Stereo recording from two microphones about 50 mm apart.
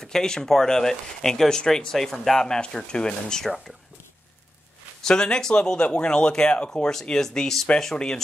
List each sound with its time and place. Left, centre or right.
0.0 s speech: centre
3.4 s speech: centre
5.0 s speech: centre
6.9 s speech: centre